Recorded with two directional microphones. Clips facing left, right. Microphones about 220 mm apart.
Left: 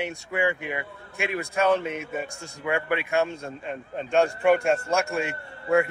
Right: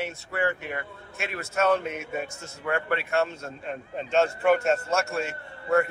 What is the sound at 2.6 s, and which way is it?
A man's voice, 10° left (ahead or behind).